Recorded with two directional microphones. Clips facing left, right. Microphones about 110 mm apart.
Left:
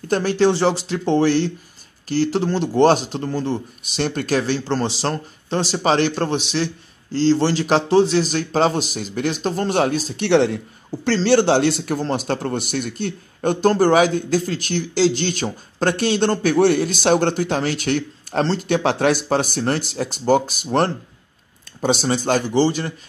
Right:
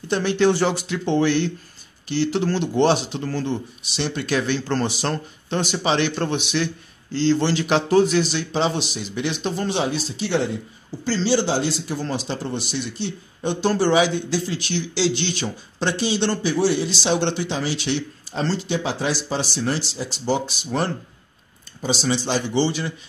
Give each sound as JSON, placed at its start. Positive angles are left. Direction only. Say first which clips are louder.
{"t": 0.1, "sound": "a man's voice", "louder": "left 2 dB", "side_deg": 40}
{"t": 8.3, "sound": "speech", "louder": "left 4 dB", "side_deg": 45}
{"t": 10.2, "sound": "speech", "louder": "left 7 dB", "side_deg": 75}
{"t": 11.2, "sound": "speech", "louder": "left 6 dB", "side_deg": 65}
{"t": 18.6, "sound": "speech", "louder": "left 6 dB", "side_deg": 65}